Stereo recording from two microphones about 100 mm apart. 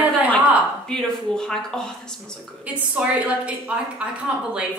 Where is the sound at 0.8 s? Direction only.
5° left (ahead or behind).